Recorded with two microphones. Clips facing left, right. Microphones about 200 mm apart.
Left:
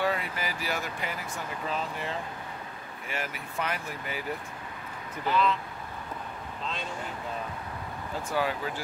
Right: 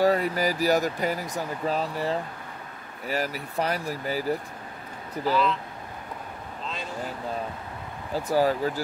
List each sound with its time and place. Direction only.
0.0 s speech: 40° right (ahead or behind)
5.3 s speech: centre (ahead or behind)
8.3 s speech: 40° right (ahead or behind)